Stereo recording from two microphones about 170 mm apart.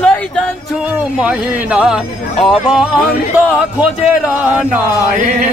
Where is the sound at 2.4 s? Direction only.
5° right (ahead or behind).